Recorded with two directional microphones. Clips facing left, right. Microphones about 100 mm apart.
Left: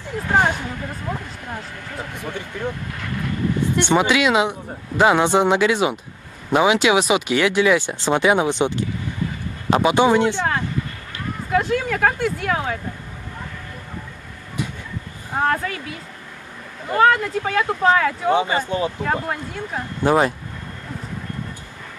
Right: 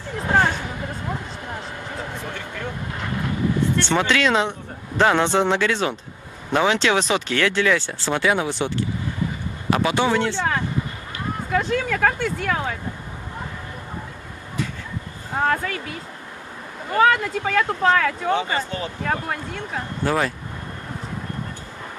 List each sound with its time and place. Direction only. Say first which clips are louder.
0.3 s speech: left 1 dB; 15° left (ahead or behind)
3.7 s speech: left 3 dB; 15° left (ahead or behind)
11.5 s speech: left 2 dB; 5° left (ahead or behind)
15.4 s speech: left 1 dB; centre (ahead or behind)
16.9 s speech: left 2 dB; centre (ahead or behind)
18.3 s speech: left 4 dB; 15° left (ahead or behind)
19.2 s speech: left 1 dB; 5° left (ahead or behind)
20.0 s speech: left 5 dB; 20° left (ahead or behind)